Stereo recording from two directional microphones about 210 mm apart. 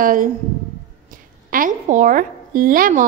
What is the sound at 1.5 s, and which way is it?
A woman's voice, 40° right (ahead or behind).